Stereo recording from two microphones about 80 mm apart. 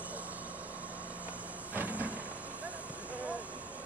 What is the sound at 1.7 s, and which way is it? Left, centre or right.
Vehicle, centre.